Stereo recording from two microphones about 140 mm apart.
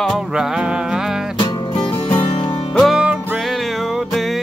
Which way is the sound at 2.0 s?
40° left (ahead or behind).